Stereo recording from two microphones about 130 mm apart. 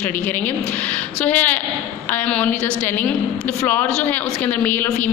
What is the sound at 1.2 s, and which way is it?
A woman's voice, 15° left (ahead or behind).